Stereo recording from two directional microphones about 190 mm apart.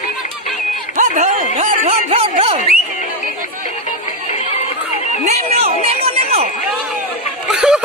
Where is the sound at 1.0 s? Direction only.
40° right (ahead or behind).